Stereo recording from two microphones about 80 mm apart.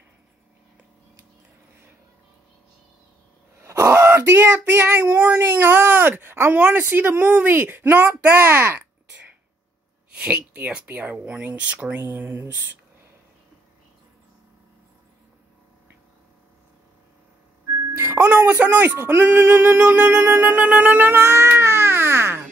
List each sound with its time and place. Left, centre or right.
3.8 s speech: right
10.1 s speech: centre
12.0 s speech: right
17.9 s speech: right